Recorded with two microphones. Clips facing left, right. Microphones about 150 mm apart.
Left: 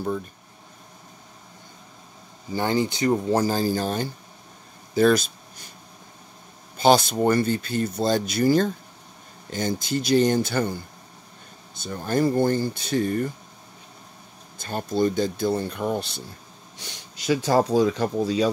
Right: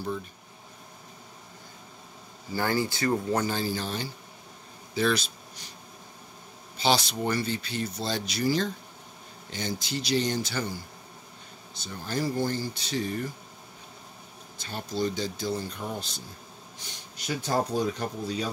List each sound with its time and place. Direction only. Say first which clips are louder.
2.5 s speech: left 4 dB; 20° left (ahead or behind)
3.3 s speech: left 6 dB; 35° left (ahead or behind)
6.8 s speech: left 8 dB; 50° left (ahead or behind)
14.6 s speech: left 7 dB; 50° left (ahead or behind)
16.7 s speech: left 3 dB; 80° left